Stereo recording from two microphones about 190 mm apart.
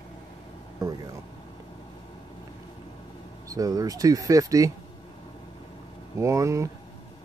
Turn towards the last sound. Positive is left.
turn(degrees=-15)  # may be behind; listen again after turning